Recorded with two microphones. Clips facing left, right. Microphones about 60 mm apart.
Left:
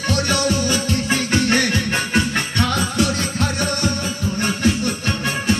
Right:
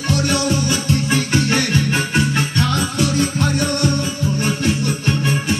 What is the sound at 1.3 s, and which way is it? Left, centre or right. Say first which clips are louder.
Music: left 2 dB; centre.